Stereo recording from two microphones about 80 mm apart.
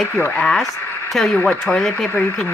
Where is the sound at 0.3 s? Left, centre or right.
Centre.